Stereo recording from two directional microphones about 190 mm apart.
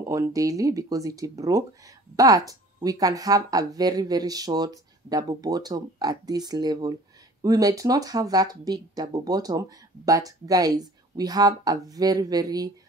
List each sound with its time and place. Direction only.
0.0 s speech: 15° right (ahead or behind)